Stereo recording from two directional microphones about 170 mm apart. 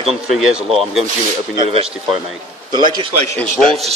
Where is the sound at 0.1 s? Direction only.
Centre (ahead or behind).